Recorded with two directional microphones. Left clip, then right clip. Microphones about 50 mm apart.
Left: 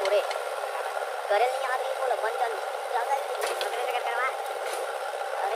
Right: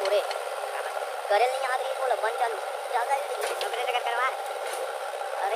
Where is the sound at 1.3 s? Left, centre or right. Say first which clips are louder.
Right 1 dB; right.